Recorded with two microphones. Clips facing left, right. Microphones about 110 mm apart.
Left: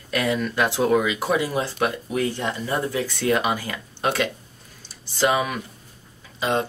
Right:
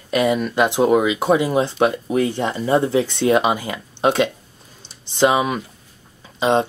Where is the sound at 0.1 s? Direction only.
20° right (ahead or behind).